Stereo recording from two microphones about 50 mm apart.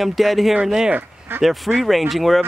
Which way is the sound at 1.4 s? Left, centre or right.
Centre.